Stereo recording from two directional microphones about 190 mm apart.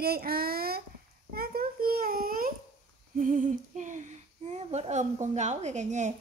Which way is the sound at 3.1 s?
40° right (ahead or behind).